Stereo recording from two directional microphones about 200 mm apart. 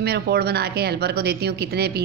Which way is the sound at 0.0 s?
55° right (ahead or behind).